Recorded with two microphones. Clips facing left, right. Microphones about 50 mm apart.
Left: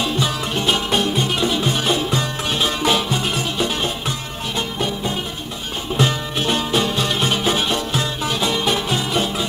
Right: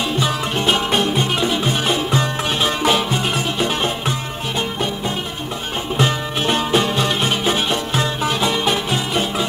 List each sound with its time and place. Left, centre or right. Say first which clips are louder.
0.0 s music: right 1 dB; right
5.9 s music: even; right